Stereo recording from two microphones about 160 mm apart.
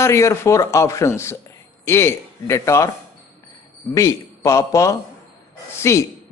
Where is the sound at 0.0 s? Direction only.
15° left (ahead or behind).